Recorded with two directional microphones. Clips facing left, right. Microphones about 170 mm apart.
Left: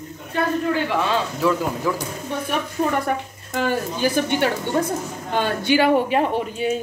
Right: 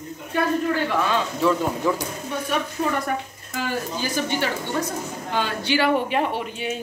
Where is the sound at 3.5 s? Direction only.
55° left (ahead or behind).